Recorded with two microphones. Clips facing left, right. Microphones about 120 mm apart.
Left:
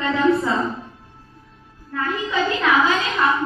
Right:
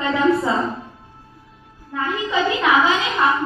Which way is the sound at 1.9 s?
20° right (ahead or behind).